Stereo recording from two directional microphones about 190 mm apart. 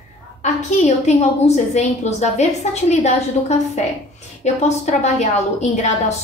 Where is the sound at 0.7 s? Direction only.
35° left (ahead or behind).